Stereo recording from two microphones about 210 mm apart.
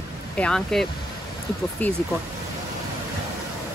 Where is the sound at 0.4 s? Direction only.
5° left (ahead or behind).